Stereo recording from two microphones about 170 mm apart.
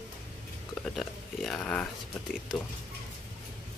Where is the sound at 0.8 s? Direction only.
Centre (ahead or behind).